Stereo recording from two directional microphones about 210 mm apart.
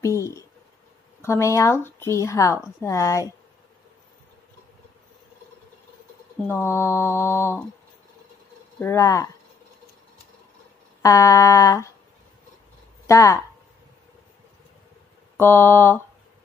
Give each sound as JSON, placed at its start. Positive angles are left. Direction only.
{"t": 0.0, "sound": "speech", "side_deg": 15}
{"t": 6.4, "sound": "speech", "side_deg": 10}
{"t": 8.7, "sound": "speech", "side_deg": 15}
{"t": 11.0, "sound": "speech", "side_deg": 15}
{"t": 13.0, "sound": "speech", "side_deg": 15}
{"t": 15.3, "sound": "speech", "side_deg": 10}